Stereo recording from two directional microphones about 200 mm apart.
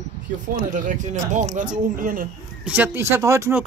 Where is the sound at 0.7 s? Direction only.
40° right (ahead or behind).